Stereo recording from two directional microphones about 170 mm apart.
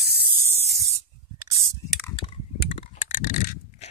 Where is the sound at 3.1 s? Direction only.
50° left (ahead or behind).